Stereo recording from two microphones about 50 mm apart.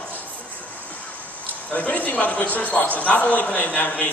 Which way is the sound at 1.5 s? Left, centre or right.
Left.